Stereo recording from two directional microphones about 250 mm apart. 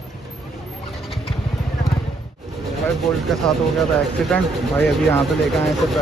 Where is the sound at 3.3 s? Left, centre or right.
Centre.